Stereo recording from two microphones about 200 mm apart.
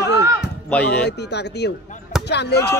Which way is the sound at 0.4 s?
5° left (ahead or behind).